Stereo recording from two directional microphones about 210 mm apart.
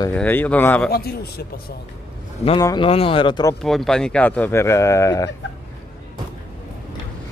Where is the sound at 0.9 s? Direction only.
45° left (ahead or behind).